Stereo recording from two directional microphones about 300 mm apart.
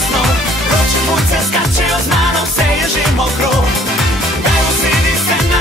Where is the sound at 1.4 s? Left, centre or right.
Centre.